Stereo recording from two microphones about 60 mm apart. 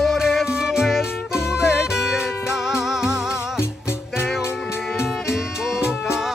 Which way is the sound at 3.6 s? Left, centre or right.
Left.